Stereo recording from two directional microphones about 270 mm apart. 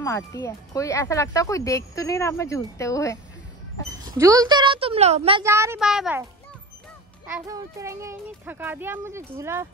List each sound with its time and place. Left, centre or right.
0.0 s speech: centre
4.0 s speech: centre
5.4 s a child's voice: centre
7.2 s a child's voice: centre